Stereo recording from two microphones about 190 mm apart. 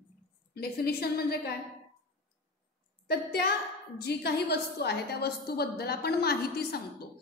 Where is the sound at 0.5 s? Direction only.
55° left (ahead or behind).